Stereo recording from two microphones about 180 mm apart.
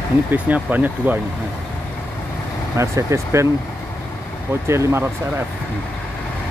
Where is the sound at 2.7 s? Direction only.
15° right (ahead or behind).